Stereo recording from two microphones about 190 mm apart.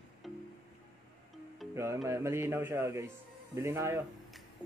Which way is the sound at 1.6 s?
Centre (ahead or behind).